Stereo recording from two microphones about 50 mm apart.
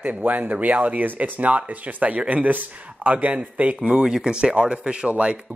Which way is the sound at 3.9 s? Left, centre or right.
Centre.